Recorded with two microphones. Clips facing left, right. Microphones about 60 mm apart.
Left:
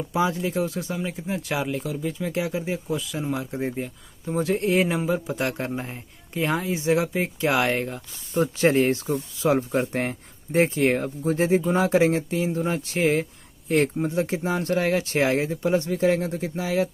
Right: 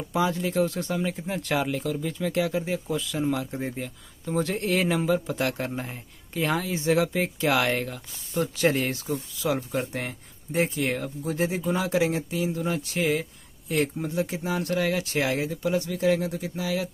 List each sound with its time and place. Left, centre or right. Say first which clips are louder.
0.1 s speech: left 1 dB; centre